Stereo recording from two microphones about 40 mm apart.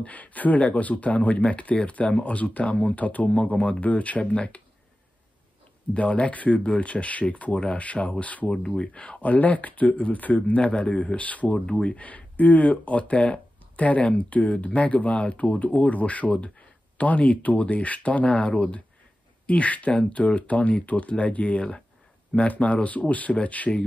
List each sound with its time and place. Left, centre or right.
0.0 s speech: left
3.3 s speech: left
3.8 s speech: left
5.9 s speech: left
8.5 s speech: centre
9.2 s speech: left
11.5 s speech: left
12.4 s speech: left